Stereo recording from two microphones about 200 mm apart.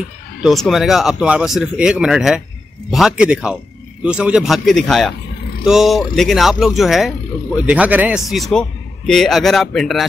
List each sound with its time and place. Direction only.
0.4 s speech: centre (ahead or behind)